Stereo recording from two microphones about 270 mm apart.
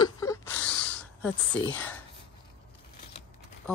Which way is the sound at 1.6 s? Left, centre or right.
Centre.